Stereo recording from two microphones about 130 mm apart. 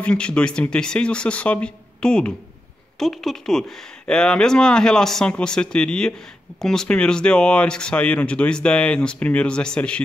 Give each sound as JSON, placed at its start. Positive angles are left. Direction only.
{"t": 0.0, "sound": "speech", "side_deg": 10}